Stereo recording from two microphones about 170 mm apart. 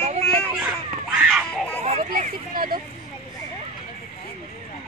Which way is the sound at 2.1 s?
55° right (ahead or behind).